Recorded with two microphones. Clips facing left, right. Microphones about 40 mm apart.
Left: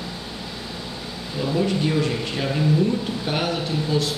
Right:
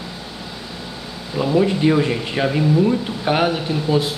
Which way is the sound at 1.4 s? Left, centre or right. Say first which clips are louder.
Right 5 dB; right.